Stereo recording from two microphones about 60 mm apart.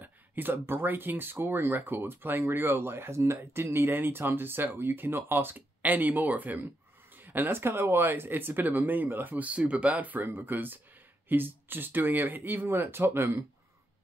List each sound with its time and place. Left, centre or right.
0.0 s speech: right